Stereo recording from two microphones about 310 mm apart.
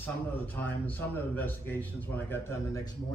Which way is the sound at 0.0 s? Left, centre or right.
Centre.